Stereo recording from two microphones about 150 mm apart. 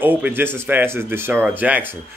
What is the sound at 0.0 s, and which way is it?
Speech, 10° right (ahead or behind).